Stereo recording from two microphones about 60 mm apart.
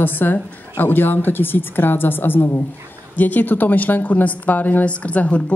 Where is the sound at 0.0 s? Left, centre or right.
Left.